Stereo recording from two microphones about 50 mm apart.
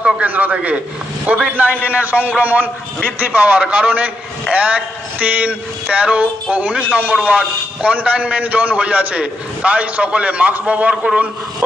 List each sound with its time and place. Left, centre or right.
0.2 s a man's voice: right